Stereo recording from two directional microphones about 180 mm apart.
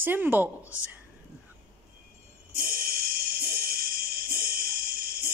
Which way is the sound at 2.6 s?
55° right (ahead or behind).